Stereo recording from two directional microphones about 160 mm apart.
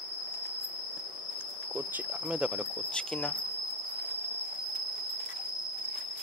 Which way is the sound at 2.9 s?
5° left (ahead or behind).